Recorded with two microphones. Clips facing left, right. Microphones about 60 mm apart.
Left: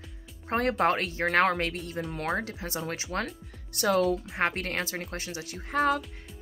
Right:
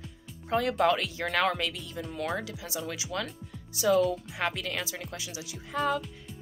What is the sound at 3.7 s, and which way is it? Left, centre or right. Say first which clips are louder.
Speech: even; left.